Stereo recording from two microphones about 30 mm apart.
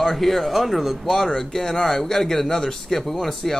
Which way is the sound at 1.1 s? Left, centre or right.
Centre.